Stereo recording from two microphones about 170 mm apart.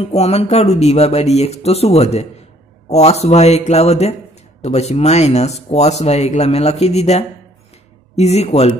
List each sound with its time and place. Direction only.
0.0 s speech: 40° left (ahead or behind)